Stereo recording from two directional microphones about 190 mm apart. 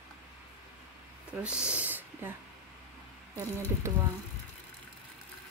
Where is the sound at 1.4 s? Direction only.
5° right (ahead or behind).